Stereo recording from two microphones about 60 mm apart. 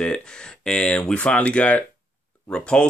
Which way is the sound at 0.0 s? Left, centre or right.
Centre.